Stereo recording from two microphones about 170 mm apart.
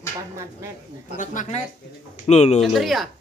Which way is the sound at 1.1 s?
50° left (ahead or behind).